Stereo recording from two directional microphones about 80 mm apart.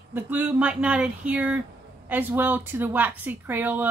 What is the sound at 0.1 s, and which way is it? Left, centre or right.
A woman's voice, right.